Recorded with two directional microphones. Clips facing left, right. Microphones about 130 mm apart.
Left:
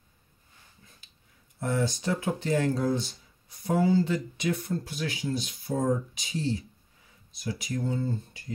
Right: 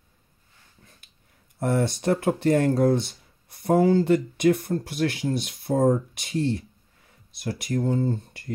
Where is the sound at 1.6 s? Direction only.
60° right (ahead or behind).